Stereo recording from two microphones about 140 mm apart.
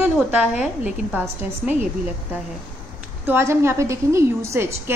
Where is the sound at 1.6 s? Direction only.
Centre (ahead or behind).